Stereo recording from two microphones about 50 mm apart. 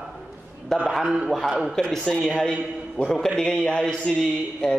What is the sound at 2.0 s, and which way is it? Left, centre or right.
Speech, centre.